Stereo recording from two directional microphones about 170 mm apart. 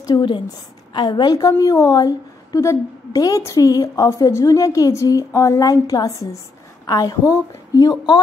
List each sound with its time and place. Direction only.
0.0 s a woman's voice: 25° left (ahead or behind)